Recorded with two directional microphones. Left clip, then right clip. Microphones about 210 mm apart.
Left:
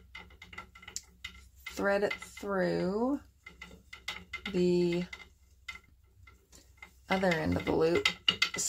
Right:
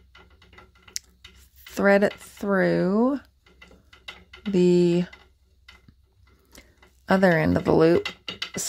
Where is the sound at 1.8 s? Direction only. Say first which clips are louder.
Right 10 dB; 55° right (ahead or behind).